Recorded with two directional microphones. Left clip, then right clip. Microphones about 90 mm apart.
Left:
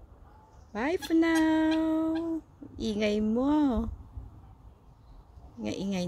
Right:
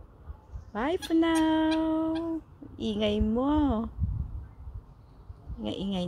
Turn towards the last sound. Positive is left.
turn(degrees=25)  # may be behind; listen again after turning